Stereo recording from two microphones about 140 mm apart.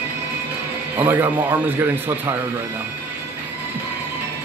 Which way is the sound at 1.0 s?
15° right (ahead or behind).